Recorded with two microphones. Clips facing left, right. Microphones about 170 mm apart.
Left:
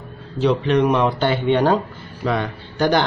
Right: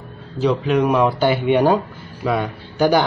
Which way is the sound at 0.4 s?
5° right (ahead or behind).